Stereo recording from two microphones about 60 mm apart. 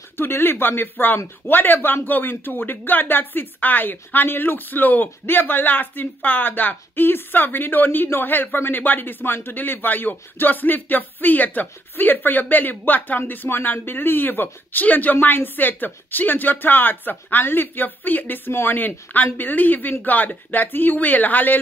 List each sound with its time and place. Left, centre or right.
0.2 s speech: left